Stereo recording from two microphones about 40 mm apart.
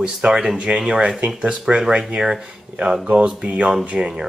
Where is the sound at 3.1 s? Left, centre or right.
Right.